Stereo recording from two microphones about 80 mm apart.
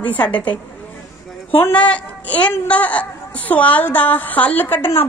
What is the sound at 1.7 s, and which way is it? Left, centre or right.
A woman's voice, centre.